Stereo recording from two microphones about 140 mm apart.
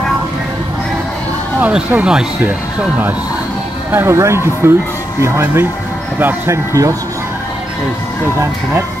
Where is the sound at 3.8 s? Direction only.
15° right (ahead or behind).